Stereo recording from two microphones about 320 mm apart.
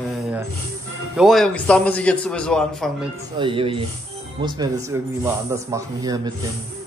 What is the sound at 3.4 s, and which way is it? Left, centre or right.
A man's voice, centre.